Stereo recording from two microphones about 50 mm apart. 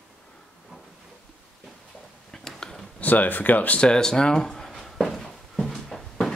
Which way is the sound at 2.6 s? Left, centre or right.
Centre.